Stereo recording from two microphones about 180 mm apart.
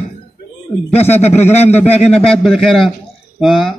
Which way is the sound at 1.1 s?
40° left (ahead or behind).